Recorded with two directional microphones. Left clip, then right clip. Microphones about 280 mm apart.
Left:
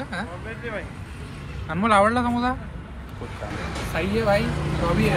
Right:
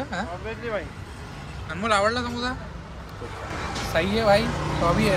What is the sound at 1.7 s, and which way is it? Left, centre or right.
Speech, centre.